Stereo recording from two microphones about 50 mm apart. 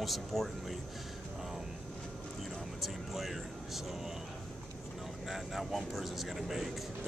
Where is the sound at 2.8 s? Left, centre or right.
Centre.